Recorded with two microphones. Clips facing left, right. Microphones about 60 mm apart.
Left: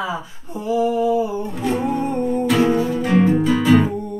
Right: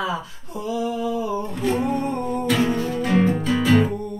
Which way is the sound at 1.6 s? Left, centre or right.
Centre.